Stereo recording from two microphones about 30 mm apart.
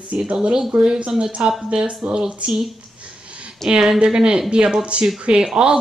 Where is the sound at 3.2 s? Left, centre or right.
Right.